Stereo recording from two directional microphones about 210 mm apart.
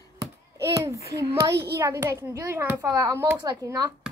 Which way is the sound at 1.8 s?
15° right (ahead or behind).